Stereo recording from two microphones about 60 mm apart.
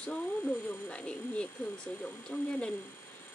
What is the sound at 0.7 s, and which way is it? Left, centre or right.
Speech, left.